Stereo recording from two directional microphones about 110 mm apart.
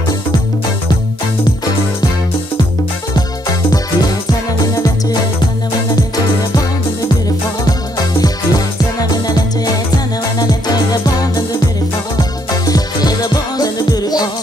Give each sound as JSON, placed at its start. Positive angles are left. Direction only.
{"t": 3.7, "sound": "music", "side_deg": 35}
{"t": 8.2, "sound": "music", "side_deg": 35}
{"t": 10.4, "sound": "music", "side_deg": 40}
{"t": 12.2, "sound": "music", "side_deg": 35}